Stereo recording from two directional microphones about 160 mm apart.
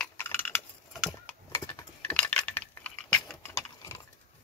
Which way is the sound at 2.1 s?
10° left (ahead or behind).